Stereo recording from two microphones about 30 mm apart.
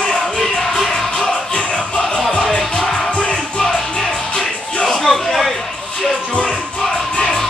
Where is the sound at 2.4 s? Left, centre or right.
Left.